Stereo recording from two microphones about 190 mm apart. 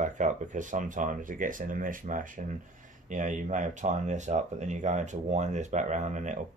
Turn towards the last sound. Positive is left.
turn(degrees=-40)  # may be behind; listen again after turning